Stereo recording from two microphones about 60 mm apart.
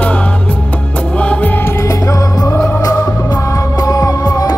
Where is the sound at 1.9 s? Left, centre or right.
Left.